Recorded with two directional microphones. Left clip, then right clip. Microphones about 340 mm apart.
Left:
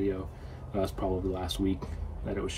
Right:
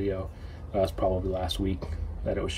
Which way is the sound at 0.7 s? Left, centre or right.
Centre.